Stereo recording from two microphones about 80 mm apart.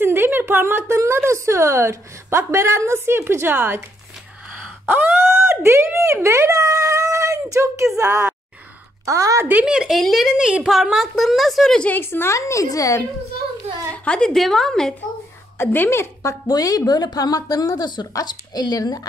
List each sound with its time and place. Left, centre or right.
0.0 s speech: right
4.8 s groan: right
5.3 s a woman's voice: right
9.5 s speech: centre
11.8 s speech: left
12.4 s a woman's voice: left
14.0 s a woman's voice: centre
15.5 s a woman's voice: left
16.2 s a woman's voice: left